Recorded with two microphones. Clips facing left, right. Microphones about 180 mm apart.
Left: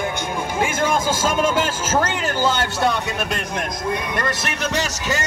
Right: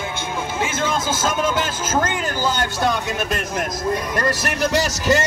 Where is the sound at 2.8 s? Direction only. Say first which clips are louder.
Even; centre (ahead or behind).